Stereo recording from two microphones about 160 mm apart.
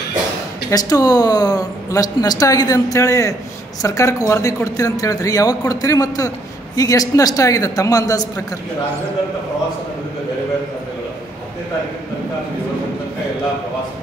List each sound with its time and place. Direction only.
0.7 s speech: 25° left (ahead or behind)